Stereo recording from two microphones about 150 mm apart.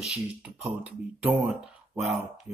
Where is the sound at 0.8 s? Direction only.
15° right (ahead or behind).